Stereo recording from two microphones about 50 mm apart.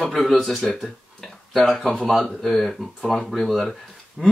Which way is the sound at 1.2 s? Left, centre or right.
Centre.